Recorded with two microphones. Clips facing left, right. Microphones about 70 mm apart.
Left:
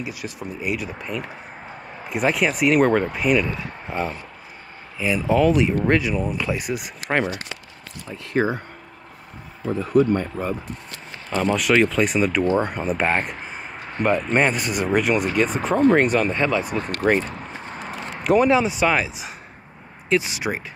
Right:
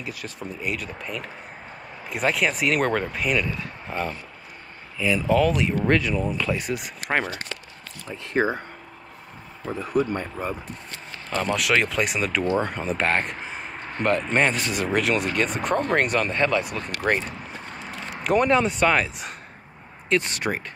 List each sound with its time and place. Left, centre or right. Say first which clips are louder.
0.0 s speech: left 3 dB; centre
5.2 s speech: left 4 dB; centre
8.3 s speech: left 1 dB; right
9.8 s speech: left 6 dB; centre
10.3 s speech: left 3 dB; centre
18.2 s speech: left 3 dB; centre